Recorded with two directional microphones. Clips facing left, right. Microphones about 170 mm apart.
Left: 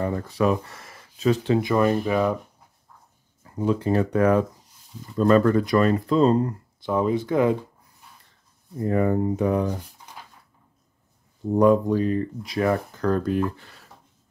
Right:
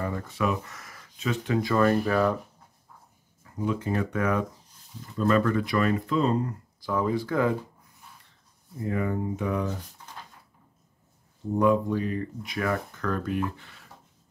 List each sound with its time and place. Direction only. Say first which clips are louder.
0.0 s speech: left 6 dB; 35° left (ahead or behind)
1.6 s speech: left 2 dB; 15° left (ahead or behind)
3.5 s speech: left 6 dB; 30° left (ahead or behind)
6.8 s speech: left 4 dB; 20° left (ahead or behind)
8.7 s speech: left 7 dB; 40° left (ahead or behind)
11.5 s speech: left 5 dB; 35° left (ahead or behind)